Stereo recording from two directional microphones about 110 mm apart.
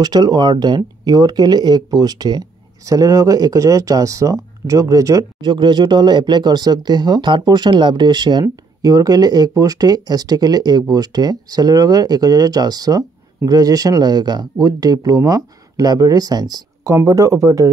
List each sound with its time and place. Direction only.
0.0 s speech: 40° right (ahead or behind)
5.4 s speech: 45° right (ahead or behind)